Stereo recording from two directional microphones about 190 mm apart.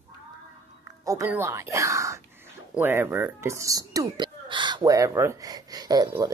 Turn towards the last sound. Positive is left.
turn(degrees=-20)  # may be behind; listen again after turning